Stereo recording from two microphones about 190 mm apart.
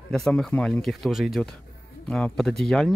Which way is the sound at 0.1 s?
5° left (ahead or behind).